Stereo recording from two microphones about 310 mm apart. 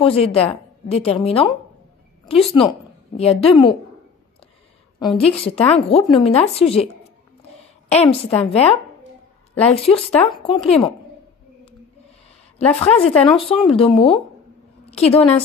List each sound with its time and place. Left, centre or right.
0.0 s a woman's voice: centre
5.7 s a woman's voice: centre
7.9 s a woman's voice: centre
12.5 s a woman's voice: centre